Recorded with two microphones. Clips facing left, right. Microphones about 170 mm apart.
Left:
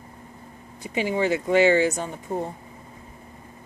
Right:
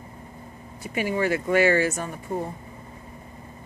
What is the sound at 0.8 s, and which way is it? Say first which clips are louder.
Speech: left 1 dB; 20° left (ahead or behind).